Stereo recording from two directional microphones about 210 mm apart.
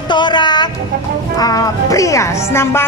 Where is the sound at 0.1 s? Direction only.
20° left (ahead or behind).